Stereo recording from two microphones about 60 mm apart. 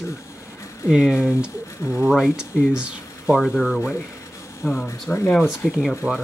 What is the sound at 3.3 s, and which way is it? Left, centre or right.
Speech, centre.